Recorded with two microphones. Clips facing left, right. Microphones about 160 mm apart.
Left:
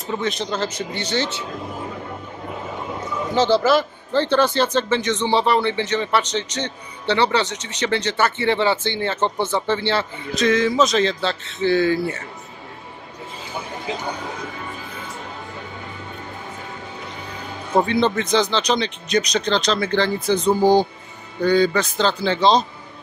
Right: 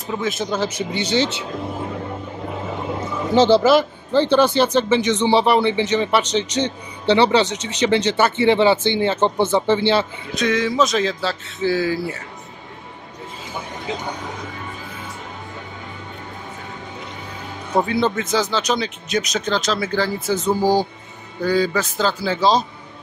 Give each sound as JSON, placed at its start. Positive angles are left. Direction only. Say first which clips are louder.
{"t": 0.0, "sound": "speech", "louder": "right 1 dB", "side_deg": 0}
{"t": 3.3, "sound": "speech", "louder": "right 4 dB", "side_deg": -25}
{"t": 10.3, "sound": "speech", "louder": "left 2 dB", "side_deg": 0}
{"t": 17.7, "sound": "speech", "louder": "left 1 dB", "side_deg": -5}